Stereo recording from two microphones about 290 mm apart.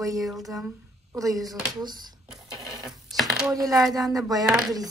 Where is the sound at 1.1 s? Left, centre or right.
Centre.